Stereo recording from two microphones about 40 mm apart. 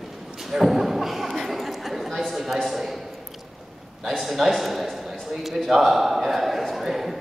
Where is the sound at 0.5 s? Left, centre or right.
Centre.